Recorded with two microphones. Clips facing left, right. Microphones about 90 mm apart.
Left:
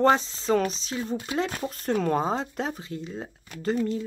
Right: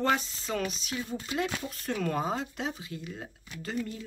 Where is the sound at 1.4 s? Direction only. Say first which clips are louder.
Left 5 dB; 40° left (ahead or behind).